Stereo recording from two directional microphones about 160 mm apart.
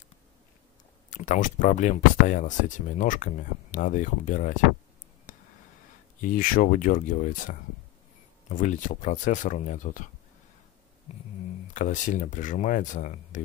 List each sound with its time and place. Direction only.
1.1 s speech: 50° left (ahead or behind)
5.3 s a sound: 55° left (ahead or behind)
6.2 s speech: 60° left (ahead or behind)
11.6 s speech: 50° left (ahead or behind)